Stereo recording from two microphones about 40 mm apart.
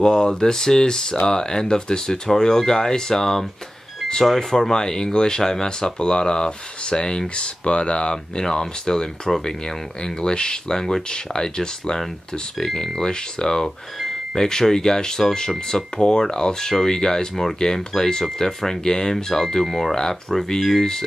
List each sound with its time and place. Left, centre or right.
0.0 s speech: centre